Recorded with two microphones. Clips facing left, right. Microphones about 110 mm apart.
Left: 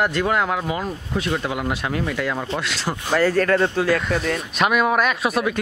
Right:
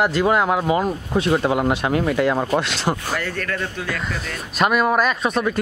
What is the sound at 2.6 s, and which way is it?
Speech, 20° right (ahead or behind).